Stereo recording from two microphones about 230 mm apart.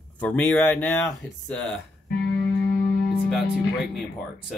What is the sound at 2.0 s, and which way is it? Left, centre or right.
Music, left.